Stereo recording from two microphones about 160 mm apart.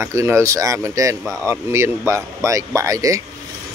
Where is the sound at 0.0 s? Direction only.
20° right (ahead or behind).